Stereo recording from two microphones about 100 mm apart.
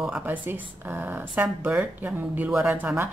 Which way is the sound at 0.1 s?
20° right (ahead or behind).